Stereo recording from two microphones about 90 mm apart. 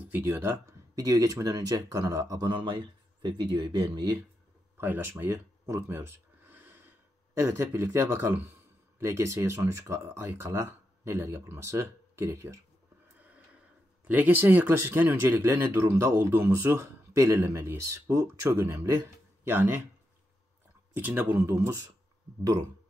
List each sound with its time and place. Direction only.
0.1 s speech: 30° right (ahead or behind)
0.9 s speech: 45° right (ahead or behind)
4.7 s speech: 20° right (ahead or behind)
5.1 s gasp: 30° right (ahead or behind)
7.3 s speech: 30° right (ahead or behind)
14.0 s speech: 20° right (ahead or behind)
20.9 s speech: 20° right (ahead or behind)